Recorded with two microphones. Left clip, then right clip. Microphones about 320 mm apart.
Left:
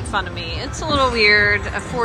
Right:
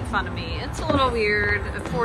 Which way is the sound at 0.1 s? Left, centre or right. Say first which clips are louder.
Left 4 dB; centre.